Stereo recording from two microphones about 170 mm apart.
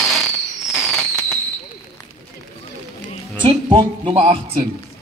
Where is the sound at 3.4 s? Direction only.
30° right (ahead or behind).